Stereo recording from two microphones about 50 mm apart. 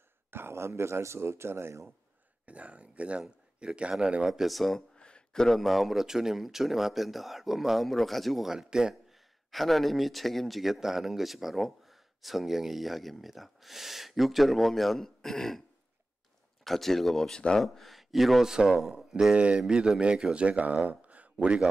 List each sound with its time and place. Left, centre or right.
0.3 s speech: right
2.4 s speech: right
4.3 s speech: centre
4.9 s a sound: centre
5.6 s speech: centre
9.1 s speech: centre
16.6 s speech: centre
18.5 s speech: centre
19.3 s speech: right